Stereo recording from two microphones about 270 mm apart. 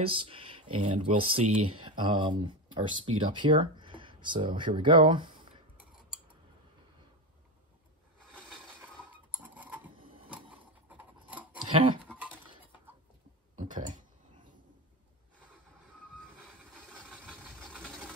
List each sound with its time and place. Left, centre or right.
0.0 s speech: centre
9.3 s tick-tock: centre
9.9 s printer: centre
10.9 s a sound: centre
13.6 s a sound: right
17.1 s vehicle: centre